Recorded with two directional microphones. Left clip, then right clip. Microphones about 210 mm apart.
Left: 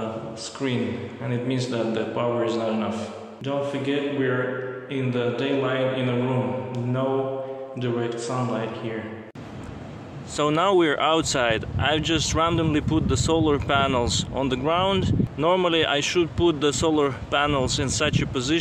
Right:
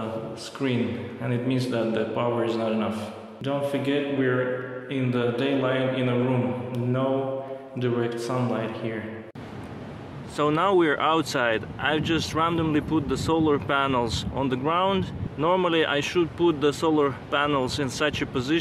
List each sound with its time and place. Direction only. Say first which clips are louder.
0.6 s a man's voice: even; 10° right (ahead or behind)
3.4 s speech: even; 15° right (ahead or behind)
10.3 s speech: left 1 dB; 15° left (ahead or behind)